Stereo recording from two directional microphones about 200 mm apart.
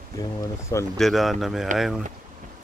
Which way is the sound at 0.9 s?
Centre (ahead or behind).